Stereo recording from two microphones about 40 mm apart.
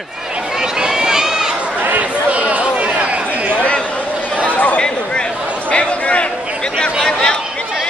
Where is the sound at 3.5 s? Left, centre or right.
Left.